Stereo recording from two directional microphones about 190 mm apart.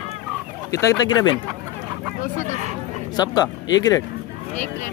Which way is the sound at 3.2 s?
20° left (ahead or behind).